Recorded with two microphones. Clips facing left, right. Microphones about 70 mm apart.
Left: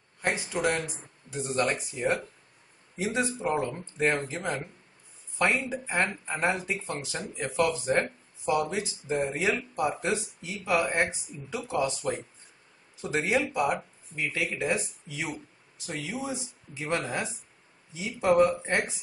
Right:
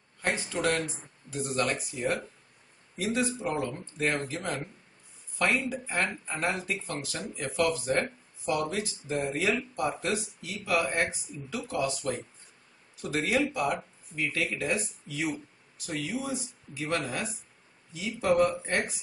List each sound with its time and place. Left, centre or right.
0.2 s speech: centre